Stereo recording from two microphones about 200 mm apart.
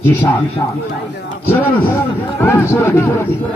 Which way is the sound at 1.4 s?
10° left (ahead or behind).